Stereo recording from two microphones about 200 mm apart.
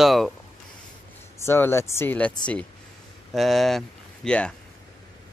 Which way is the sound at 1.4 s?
15° left (ahead or behind).